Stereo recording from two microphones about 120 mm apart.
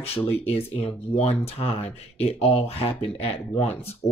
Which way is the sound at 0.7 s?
60° left (ahead or behind).